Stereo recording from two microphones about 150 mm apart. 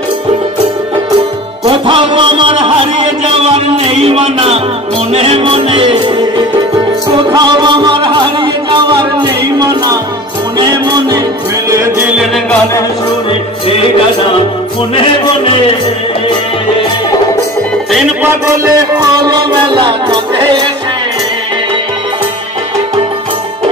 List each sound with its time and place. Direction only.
1.7 s music: 35° right (ahead or behind)
18.9 s music: 30° right (ahead or behind)